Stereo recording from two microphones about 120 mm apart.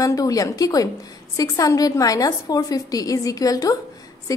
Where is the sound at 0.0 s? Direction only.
30° left (ahead or behind).